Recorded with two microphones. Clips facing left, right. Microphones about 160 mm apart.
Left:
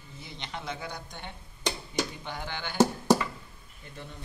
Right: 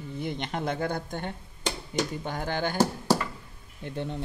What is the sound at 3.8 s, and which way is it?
Speech, 65° right (ahead or behind).